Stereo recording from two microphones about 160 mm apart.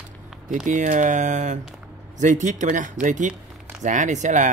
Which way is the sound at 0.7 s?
50° right (ahead or behind).